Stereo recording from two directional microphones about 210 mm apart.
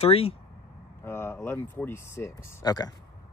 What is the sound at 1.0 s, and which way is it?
Speech, 10° left (ahead or behind).